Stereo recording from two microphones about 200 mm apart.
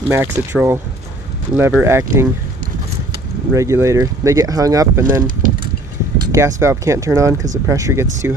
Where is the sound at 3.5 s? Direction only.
15° right (ahead or behind).